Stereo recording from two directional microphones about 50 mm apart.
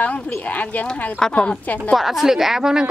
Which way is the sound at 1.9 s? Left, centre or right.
Centre.